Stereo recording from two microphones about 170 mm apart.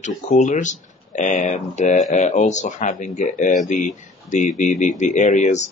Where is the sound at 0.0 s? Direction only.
45° left (ahead or behind).